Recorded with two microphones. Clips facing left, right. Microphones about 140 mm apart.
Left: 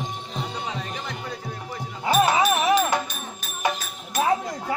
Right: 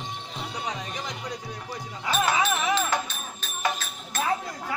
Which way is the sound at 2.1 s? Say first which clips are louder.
Left 5 dB; 35° left (ahead or behind).